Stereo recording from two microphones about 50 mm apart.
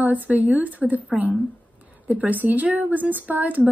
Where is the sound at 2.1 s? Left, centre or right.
Right.